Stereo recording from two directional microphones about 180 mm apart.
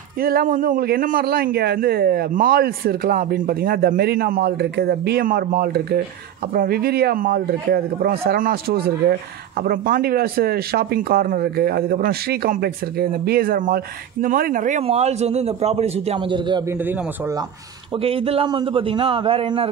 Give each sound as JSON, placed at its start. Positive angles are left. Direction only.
{"t": 0.2, "sound": "a man's voice", "side_deg": -55}
{"t": 16.6, "sound": "a man's voice", "side_deg": -10}
{"t": 17.9, "sound": "a man's voice", "side_deg": -30}